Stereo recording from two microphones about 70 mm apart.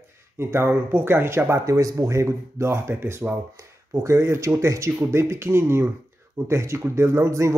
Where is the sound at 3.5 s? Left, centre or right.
Right.